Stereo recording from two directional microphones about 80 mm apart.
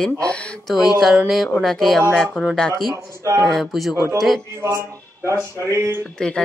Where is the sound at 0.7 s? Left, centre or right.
Centre.